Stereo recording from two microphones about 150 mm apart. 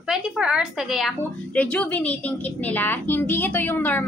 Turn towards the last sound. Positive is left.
turn(degrees=15)  # may be behind; listen again after turning